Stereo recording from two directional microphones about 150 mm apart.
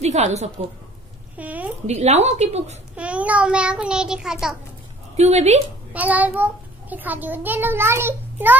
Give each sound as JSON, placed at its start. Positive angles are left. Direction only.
{"t": 0.0, "sound": "a woman's voice", "side_deg": -45}
{"t": 1.3, "sound": "a woman's voice", "side_deg": -10}
{"t": 1.9, "sound": "a woman's voice", "side_deg": -45}
{"t": 3.0, "sound": "a child's voice", "side_deg": -10}
{"t": 5.1, "sound": "a woman's voice", "side_deg": -45}
{"t": 5.9, "sound": "a child's voice", "side_deg": -10}